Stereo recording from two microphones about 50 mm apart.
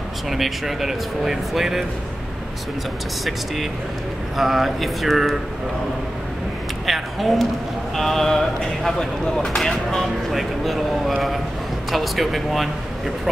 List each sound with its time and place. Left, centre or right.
0.3 s speech: centre
4.4 s speech: centre
6.9 s speech: centre
8.9 s speech: centre